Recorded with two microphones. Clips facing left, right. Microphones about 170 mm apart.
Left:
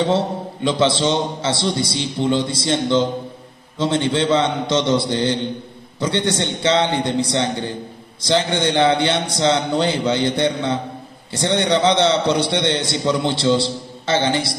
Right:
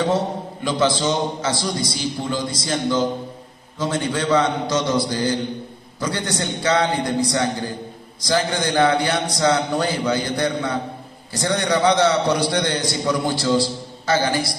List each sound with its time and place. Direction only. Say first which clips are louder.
0.7 s a man's voice: left 2 dB; 25° left (ahead or behind)